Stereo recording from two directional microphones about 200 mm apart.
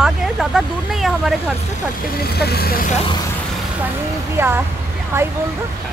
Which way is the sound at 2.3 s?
50° left (ahead or behind).